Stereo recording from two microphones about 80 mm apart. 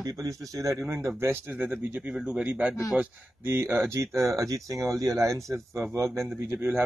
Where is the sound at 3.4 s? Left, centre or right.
Right.